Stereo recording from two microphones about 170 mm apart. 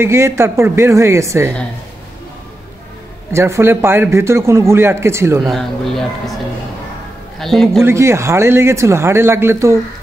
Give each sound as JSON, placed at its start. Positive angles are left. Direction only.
{"t": 0.0, "sound": "a man's voice", "side_deg": -15}
{"t": 3.3, "sound": "a man's voice", "side_deg": -15}
{"t": 5.4, "sound": "speech", "side_deg": 0}
{"t": 7.3, "sound": "speech", "side_deg": 0}
{"t": 7.8, "sound": "a man's voice", "side_deg": -15}